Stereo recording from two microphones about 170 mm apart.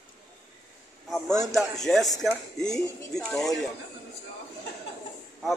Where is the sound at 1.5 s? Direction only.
Centre (ahead or behind).